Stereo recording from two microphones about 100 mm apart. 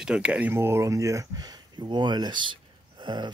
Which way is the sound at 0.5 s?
25° right (ahead or behind).